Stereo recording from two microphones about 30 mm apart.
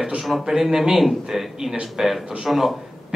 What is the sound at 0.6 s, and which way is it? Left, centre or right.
Speech, centre.